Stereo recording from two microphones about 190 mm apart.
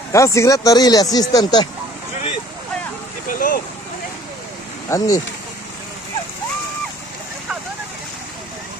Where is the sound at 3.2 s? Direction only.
45° left (ahead or behind).